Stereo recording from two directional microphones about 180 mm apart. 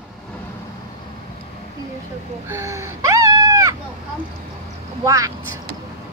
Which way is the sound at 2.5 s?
15° right (ahead or behind).